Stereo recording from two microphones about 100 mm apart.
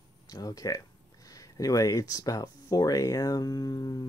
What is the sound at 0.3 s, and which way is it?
Speech, 40° left (ahead or behind).